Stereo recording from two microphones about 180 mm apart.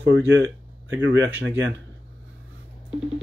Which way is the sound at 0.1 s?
90° right.